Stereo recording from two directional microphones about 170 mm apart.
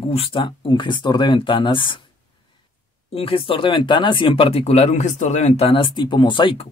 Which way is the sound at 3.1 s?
35° left (ahead or behind).